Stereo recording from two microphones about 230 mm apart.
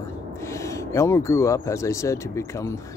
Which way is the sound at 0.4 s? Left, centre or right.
Centre.